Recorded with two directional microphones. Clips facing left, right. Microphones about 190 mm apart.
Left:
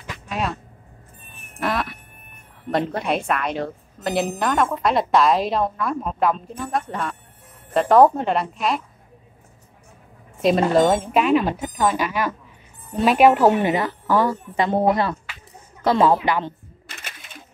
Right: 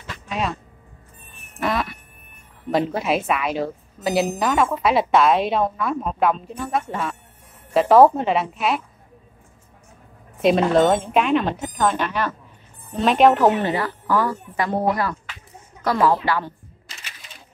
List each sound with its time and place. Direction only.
0.3 s speech: centre (ahead or behind)
1.6 s a woman's voice: centre (ahead or behind)
10.4 s a woman's voice: centre (ahead or behind); by 16.5 s 20° left (ahead or behind)
16.8 s typewriter: 55° left (ahead or behind)